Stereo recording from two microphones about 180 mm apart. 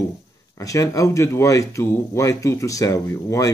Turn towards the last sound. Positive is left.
turn(degrees=15)  # may be behind; listen again after turning